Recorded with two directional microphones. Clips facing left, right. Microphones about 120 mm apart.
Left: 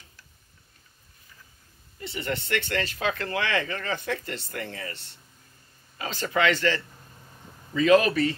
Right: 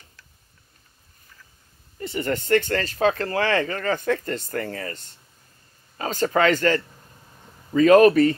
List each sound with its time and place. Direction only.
2.0 s speech: 45° right (ahead or behind)